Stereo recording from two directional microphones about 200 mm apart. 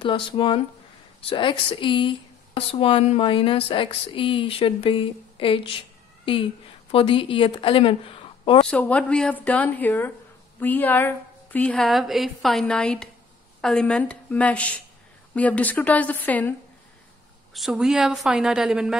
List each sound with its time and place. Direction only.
0.0 s speech: 25° left (ahead or behind)
8.6 s a woman's voice: 5° left (ahead or behind)
17.6 s a woman's voice: centre (ahead or behind)